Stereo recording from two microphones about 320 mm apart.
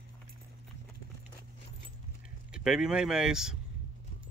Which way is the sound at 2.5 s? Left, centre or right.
Centre.